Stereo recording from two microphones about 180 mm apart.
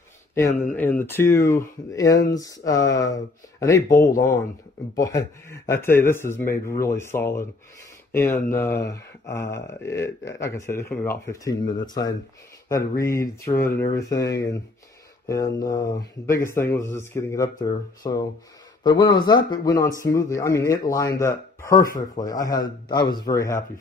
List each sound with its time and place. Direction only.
0.3 s speech: 15° left (ahead or behind)
13.1 s speech: 15° left (ahead or behind)
15.2 s speech: 15° left (ahead or behind)